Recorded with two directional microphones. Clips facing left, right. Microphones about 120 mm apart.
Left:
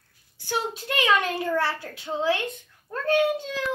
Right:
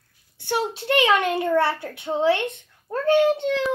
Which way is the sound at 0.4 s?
65° right (ahead or behind).